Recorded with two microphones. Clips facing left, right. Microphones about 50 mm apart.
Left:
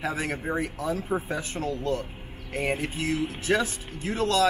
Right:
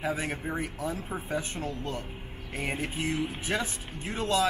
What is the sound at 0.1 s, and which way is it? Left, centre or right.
Speech, left.